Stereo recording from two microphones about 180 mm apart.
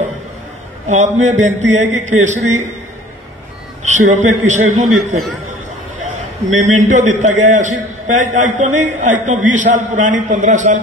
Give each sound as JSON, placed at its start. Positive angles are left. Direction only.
{"t": 0.8, "sound": "speech", "side_deg": -40}
{"t": 3.8, "sound": "a man's voice", "side_deg": -40}